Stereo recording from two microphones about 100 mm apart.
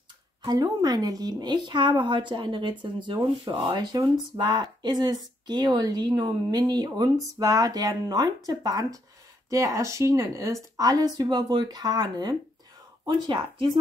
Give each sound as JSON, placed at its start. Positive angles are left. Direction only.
{"t": 0.5, "sound": "a woman's voice", "side_deg": -40}
{"t": 13.0, "sound": "speech", "side_deg": -55}